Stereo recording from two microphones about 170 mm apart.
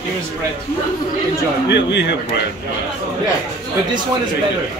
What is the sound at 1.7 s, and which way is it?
Speech, 90° left.